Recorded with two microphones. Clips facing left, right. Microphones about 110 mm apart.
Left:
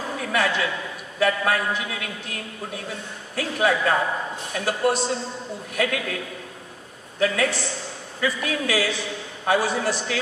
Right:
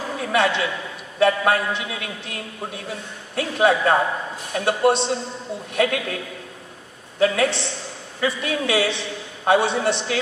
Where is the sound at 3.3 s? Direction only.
25° right (ahead or behind).